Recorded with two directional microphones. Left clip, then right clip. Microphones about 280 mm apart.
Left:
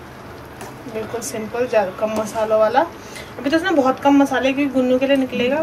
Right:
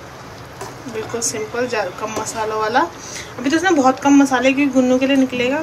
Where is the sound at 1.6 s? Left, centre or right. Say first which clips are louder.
Left 4 dB; centre.